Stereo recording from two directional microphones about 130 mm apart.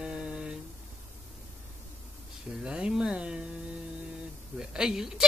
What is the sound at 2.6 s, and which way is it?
Speech, 5° right (ahead or behind).